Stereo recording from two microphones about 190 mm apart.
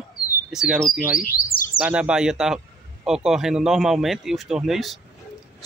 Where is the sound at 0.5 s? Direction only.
Centre (ahead or behind).